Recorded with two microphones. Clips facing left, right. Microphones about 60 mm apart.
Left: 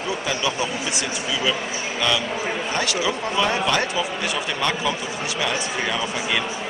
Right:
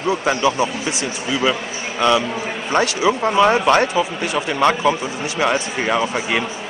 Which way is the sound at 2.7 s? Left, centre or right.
Right.